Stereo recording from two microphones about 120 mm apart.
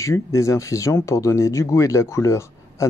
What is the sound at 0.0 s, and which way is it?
Speech, 25° left (ahead or behind).